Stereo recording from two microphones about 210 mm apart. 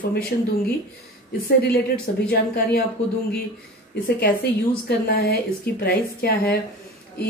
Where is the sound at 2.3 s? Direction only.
50° left (ahead or behind).